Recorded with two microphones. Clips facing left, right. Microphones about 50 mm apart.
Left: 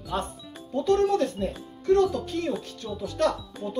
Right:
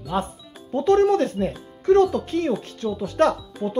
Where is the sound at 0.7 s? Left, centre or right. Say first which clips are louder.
Right 5 dB; right.